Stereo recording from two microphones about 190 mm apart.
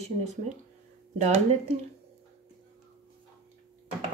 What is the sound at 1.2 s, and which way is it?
Speech, 35° right (ahead or behind).